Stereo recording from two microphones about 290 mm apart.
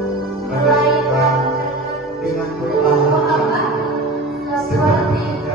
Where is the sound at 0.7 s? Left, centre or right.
Centre.